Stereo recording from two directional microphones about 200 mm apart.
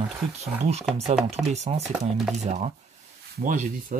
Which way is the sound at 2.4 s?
35° right (ahead or behind).